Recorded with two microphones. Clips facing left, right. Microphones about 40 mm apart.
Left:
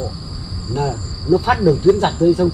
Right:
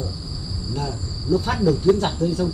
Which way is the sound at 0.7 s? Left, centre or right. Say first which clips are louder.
Left 8 dB; left.